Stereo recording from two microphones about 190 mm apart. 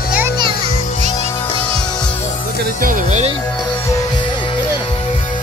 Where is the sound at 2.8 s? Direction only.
45° right (ahead or behind).